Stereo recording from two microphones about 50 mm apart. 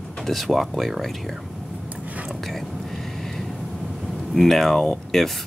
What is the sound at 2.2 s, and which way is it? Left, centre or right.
Speech, centre.